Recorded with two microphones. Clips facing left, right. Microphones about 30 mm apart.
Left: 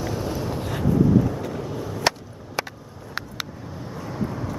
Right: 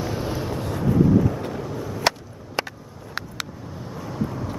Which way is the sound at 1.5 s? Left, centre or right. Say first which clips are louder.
Even; centre.